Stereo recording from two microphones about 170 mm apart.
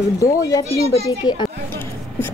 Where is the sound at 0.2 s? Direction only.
20° left (ahead or behind).